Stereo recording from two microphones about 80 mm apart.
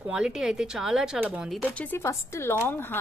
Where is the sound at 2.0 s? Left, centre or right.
Left.